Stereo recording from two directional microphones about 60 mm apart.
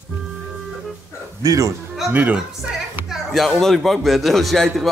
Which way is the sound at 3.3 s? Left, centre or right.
Centre.